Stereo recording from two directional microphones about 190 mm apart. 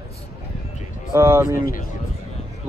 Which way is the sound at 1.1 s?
10° right (ahead or behind).